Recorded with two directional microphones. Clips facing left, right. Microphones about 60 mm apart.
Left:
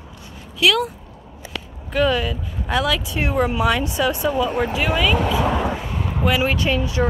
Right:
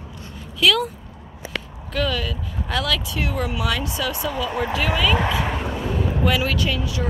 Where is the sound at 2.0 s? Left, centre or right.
Left.